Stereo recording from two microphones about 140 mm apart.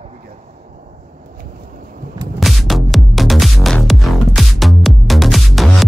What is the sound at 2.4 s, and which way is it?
Music, centre (ahead or behind).